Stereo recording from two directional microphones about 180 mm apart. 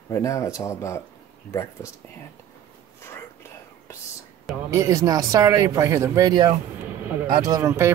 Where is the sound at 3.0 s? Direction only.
15° left (ahead or behind).